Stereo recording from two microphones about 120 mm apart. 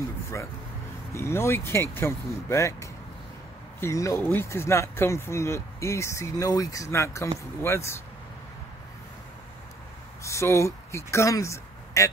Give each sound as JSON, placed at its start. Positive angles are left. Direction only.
{"t": 1.1, "sound": "speech", "side_deg": 20}
{"t": 10.2, "sound": "speech", "side_deg": 25}